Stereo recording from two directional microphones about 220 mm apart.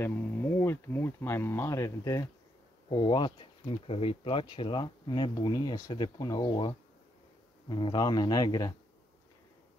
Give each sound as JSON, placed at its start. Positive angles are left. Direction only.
{"t": 0.0, "sound": "speech", "side_deg": 10}